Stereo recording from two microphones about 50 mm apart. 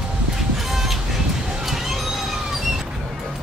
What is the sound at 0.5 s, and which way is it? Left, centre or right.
Music, centre.